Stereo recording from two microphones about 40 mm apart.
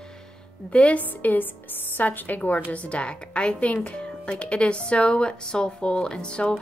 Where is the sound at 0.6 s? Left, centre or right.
Left.